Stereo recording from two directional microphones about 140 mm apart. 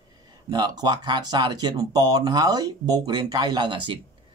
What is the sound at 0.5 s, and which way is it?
Speech, 30° right (ahead or behind).